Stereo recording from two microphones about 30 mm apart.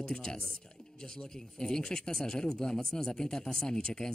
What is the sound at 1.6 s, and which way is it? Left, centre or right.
A man's voice, left.